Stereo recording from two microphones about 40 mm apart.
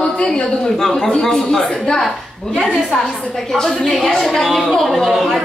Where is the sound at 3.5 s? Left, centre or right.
Centre.